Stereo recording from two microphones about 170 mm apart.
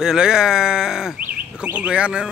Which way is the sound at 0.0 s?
5° right (ahead or behind).